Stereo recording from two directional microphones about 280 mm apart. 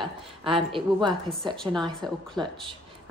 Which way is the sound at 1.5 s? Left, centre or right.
Centre.